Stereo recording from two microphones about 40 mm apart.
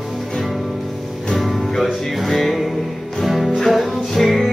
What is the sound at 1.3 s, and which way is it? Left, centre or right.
Music, centre.